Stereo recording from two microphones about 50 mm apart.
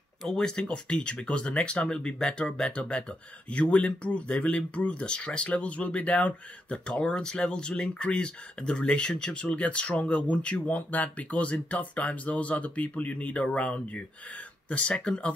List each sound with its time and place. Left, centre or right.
0.3 s speech: centre